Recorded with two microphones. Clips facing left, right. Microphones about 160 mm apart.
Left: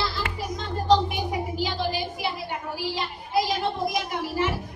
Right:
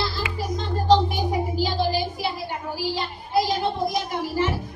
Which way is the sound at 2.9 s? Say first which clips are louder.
Right 2 dB; 30° right (ahead or behind).